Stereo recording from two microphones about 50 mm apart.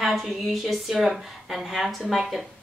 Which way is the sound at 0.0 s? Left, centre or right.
Centre.